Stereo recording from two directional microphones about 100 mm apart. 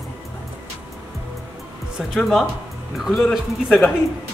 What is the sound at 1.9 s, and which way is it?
Speech, centre (ahead or behind).